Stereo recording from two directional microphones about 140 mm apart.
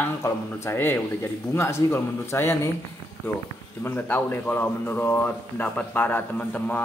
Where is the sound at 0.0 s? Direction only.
15° left (ahead or behind).